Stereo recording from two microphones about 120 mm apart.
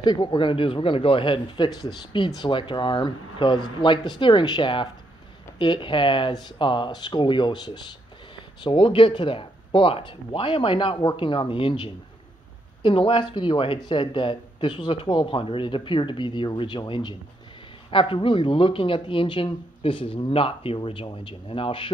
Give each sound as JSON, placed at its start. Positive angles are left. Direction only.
{"t": 0.0, "sound": "speech", "side_deg": 35}